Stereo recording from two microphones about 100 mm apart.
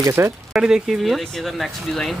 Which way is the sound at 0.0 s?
25° right (ahead or behind).